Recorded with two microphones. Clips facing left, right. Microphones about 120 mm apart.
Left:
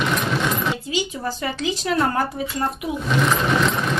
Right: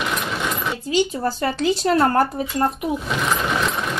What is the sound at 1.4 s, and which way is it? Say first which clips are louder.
Speech: right 6 dB; 45° right (ahead or behind).